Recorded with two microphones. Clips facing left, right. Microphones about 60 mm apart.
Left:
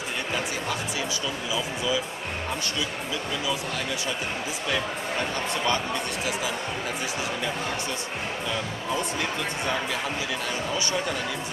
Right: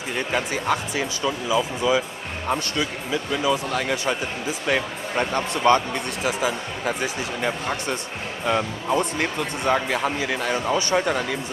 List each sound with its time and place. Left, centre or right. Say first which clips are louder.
0.3 s speech: right 7 dB; right
3.4 s speech: right 9 dB; right
5.7 s speech: right 10 dB; right
8.5 s speech: right 10 dB; right